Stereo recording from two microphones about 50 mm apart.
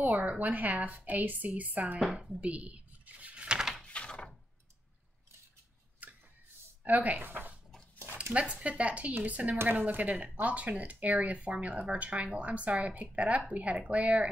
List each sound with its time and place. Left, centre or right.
0.0 s a woman's voice: right
2.1 s speech: centre
2.4 s a sound: right
3.4 s a sound: centre
3.8 s thunk: left
6.0 s tick-tock: right
6.8 s a woman's voice: right
8.3 s a woman's voice: right